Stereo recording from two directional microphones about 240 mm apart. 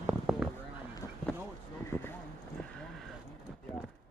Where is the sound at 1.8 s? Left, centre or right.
Centre.